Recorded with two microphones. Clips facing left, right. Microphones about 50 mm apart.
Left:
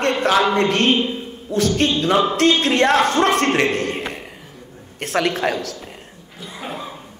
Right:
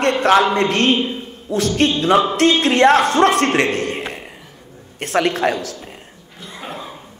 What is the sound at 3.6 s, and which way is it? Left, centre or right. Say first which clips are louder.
Speech: even; right.